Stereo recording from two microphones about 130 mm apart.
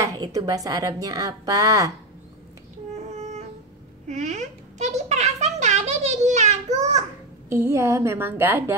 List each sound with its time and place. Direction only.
0.0 s a woman's voice: 25° right (ahead or behind)
4.1 s a sound: 65° right (ahead or behind)
7.4 s a woman's voice: 20° right (ahead or behind)